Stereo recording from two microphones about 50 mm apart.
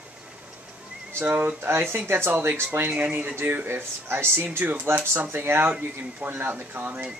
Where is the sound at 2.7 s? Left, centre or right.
Right.